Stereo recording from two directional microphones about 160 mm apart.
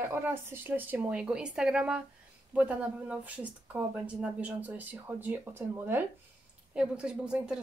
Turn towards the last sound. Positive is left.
turn(degrees=-5)  # may be behind; listen again after turning